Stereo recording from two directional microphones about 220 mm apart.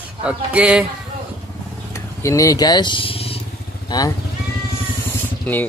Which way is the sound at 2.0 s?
15° left (ahead or behind).